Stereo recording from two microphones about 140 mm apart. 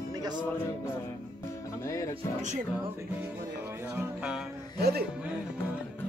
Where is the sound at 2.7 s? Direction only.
10° right (ahead or behind).